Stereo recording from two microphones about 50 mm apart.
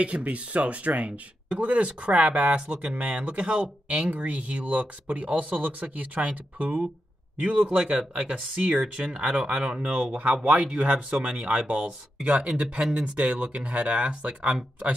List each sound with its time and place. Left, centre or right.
0.0 s speech: right